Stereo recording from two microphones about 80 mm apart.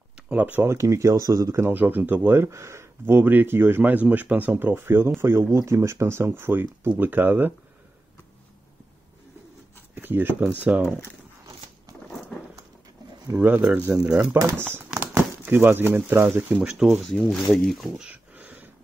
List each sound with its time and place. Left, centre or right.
0.1 s a sound: centre
0.7 s speech: right
9.9 s speech: right
13.4 s speech: centre
14.6 s speech: right
16.6 s speech: centre
17.0 s speech: centre
18.0 s a sound: centre